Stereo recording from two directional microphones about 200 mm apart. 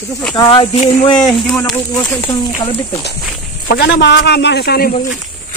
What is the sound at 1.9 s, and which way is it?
Speech, 15° left (ahead or behind).